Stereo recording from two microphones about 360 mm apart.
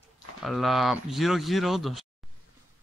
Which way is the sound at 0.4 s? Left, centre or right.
Centre.